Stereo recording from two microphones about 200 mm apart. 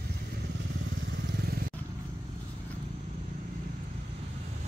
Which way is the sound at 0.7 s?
65° right (ahead or behind).